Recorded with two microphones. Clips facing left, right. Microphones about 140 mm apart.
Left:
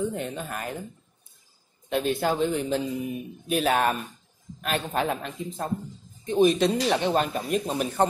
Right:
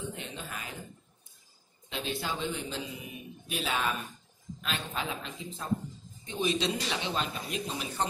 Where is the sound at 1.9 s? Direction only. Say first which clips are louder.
Left 10 dB; 50° left (ahead or behind).